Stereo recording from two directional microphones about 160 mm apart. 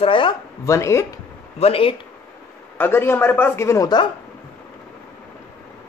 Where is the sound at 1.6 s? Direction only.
35° left (ahead or behind).